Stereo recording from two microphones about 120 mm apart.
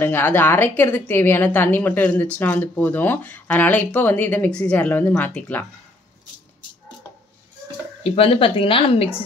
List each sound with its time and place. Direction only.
0.0 s a woman's voice: 20° left (ahead or behind)
8.0 s speech: 55° left (ahead or behind)